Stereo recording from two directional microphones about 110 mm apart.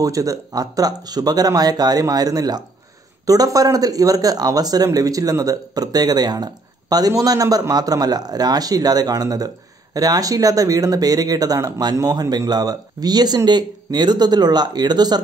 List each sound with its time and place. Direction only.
0.0 s speech: 30° right (ahead or behind)